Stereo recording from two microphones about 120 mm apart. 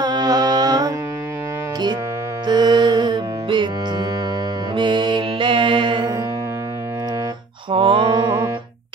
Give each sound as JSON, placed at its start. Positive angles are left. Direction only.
{"t": 0.0, "sound": "music", "side_deg": -35}
{"t": 2.4, "sound": "music", "side_deg": -35}
{"t": 4.7, "sound": "mantra", "side_deg": -40}
{"t": 7.7, "sound": "mantra", "side_deg": -45}